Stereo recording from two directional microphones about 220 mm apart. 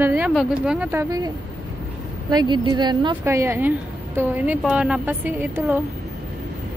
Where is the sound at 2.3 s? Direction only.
20° right (ahead or behind).